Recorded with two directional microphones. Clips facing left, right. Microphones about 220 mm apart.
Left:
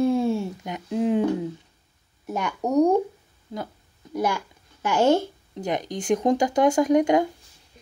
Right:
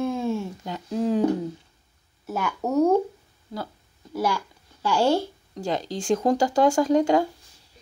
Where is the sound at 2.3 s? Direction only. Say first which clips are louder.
Even; 5° right (ahead or behind).